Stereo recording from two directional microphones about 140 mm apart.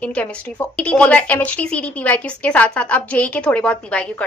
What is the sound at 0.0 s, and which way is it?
A woman's voice, 10° left (ahead or behind).